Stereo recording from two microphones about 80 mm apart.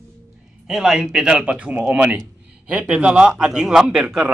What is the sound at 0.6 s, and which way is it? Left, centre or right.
A man's voice, centre.